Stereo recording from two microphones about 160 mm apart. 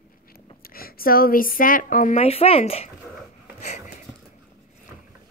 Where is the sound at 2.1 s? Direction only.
40° left (ahead or behind).